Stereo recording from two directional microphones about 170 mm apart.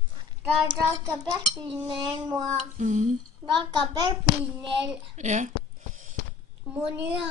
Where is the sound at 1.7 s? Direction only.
30° right (ahead or behind).